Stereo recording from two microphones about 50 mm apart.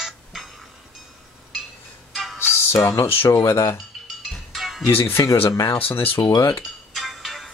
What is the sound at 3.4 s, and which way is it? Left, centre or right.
Speech, left.